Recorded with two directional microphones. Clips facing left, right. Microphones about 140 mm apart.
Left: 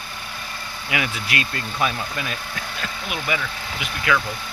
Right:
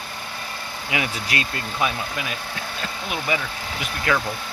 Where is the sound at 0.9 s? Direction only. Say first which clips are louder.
Even; 25° right (ahead or behind).